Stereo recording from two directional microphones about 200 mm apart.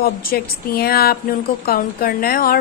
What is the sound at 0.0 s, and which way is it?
Speech, 50° left (ahead or behind).